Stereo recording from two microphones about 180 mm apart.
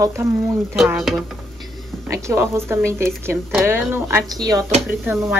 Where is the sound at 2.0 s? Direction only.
15° right (ahead or behind).